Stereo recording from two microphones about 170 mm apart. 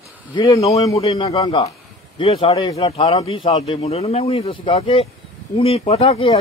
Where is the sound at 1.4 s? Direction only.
25° left (ahead or behind).